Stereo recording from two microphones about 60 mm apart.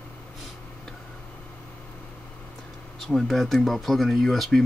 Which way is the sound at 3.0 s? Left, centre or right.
Centre.